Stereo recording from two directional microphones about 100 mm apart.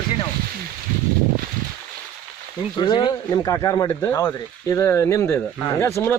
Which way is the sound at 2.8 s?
50° left (ahead or behind).